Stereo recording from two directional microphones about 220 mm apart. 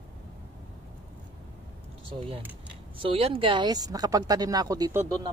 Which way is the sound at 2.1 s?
25° right (ahead or behind).